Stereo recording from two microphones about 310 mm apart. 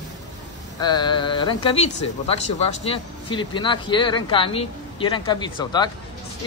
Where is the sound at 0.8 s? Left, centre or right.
Centre.